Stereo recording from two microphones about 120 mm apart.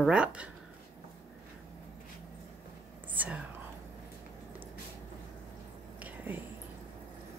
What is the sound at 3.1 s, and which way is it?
Whispering, 10° right (ahead or behind).